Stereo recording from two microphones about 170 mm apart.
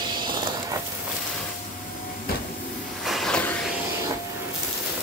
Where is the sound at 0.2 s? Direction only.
25° right (ahead or behind).